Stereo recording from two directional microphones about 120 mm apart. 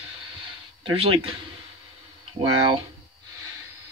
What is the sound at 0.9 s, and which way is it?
Speech, 50° right (ahead or behind).